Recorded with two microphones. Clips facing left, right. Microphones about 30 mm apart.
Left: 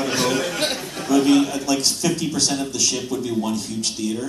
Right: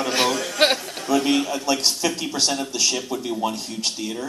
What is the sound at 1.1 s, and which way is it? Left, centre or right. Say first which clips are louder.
A man's voice: left 4 dB; centre.